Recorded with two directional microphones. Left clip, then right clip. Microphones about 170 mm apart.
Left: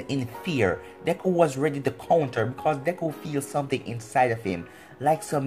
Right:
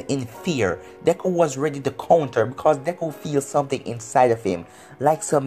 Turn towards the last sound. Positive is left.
turn(degrees=-30)  # may be behind; listen again after turning